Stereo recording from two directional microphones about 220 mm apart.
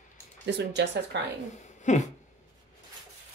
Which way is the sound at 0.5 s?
50° right (ahead or behind).